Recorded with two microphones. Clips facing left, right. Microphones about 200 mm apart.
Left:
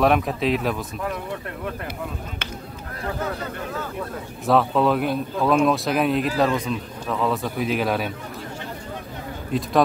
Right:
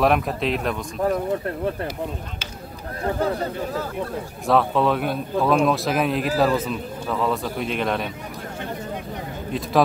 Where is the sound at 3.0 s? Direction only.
35° right (ahead or behind).